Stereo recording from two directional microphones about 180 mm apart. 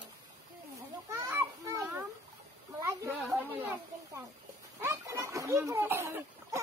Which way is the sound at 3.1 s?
10° right (ahead or behind).